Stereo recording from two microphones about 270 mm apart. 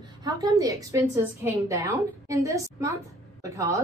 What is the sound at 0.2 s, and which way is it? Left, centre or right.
A woman's voice, centre.